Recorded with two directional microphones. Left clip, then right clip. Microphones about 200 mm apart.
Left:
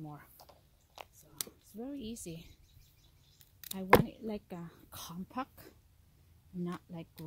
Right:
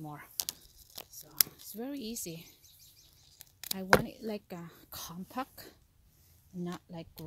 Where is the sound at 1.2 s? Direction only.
25° right (ahead or behind).